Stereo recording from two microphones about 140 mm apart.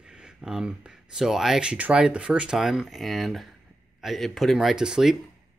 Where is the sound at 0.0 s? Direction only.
5° right (ahead or behind).